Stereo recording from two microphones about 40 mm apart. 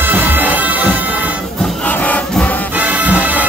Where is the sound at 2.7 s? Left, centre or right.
Right.